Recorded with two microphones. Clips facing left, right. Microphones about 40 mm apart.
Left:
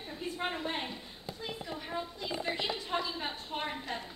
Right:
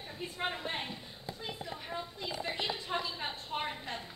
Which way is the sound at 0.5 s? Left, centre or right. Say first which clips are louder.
Left 2 dB; centre.